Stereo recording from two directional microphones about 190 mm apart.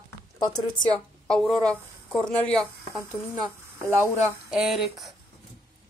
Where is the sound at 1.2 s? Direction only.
Centre (ahead or behind).